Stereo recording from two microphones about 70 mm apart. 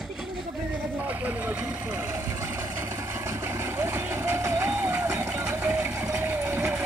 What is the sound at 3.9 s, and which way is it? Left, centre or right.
Vehicle, right.